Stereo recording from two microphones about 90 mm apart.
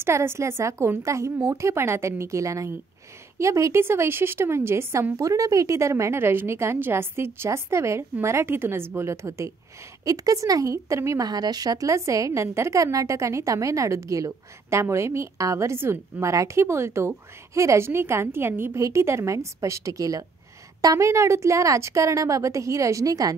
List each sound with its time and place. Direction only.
0.0 s a woman's voice: 30° right (ahead or behind)
11.2 s a woman's voice: 45° right (ahead or behind)